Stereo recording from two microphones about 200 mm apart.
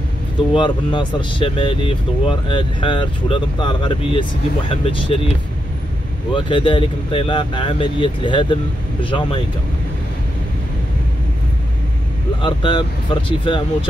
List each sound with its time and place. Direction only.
0.6 s speech: 25° left (ahead or behind)
6.3 s speech: 25° left (ahead or behind)
12.4 s speech: 25° left (ahead or behind)